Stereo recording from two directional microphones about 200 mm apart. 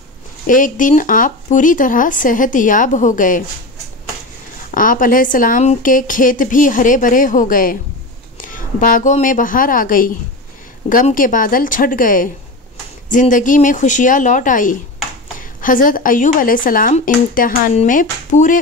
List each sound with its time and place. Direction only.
0.5 s a woman's voice: 40° left (ahead or behind)
4.6 s a woman's voice: 40° left (ahead or behind)